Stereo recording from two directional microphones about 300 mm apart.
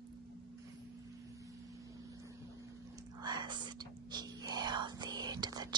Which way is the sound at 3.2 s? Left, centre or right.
Centre.